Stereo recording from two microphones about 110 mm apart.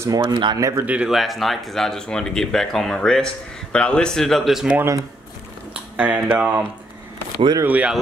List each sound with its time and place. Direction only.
0.0 s speech: 25° right (ahead or behind)
0.3 s speech: 45° right (ahead or behind)
0.6 s speech: 30° right (ahead or behind)
0.8 s speech: 10° right (ahead or behind)
1.1 s speech: centre (ahead or behind)
4.7 s speech: 25° right (ahead or behind)
5.9 s speech: 15° right (ahead or behind)
7.6 s speech: 15° right (ahead or behind)